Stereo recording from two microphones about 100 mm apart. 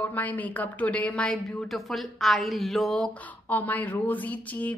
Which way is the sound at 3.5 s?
15° left (ahead or behind).